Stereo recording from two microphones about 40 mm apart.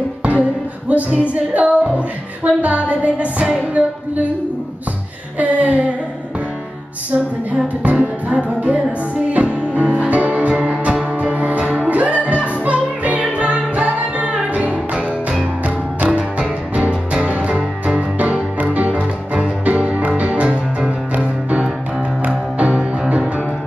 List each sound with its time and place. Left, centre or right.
0.4 s music: right
5.4 s music: right
7.6 s music: right
10.5 s music: right
18.9 s music: right
19.6 s music: right